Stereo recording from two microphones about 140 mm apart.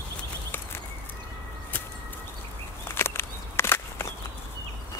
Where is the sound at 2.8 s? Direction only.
15° left (ahead or behind).